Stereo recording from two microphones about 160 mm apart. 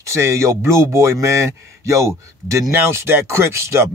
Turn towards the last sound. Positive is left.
turn(degrees=-15)  # may be behind; listen again after turning